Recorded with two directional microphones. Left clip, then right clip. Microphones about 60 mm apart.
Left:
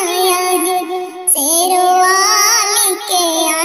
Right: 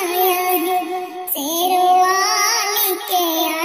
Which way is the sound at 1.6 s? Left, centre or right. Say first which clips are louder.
Left 2 dB; left.